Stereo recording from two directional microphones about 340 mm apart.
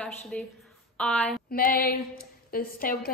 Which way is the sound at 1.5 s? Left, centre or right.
Left.